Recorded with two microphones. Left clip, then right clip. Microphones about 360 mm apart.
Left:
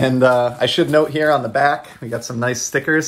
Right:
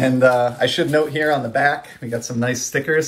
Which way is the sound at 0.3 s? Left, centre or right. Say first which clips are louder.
Left 1 dB; centre.